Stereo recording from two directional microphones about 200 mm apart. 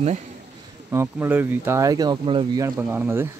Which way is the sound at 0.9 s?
10° right (ahead or behind).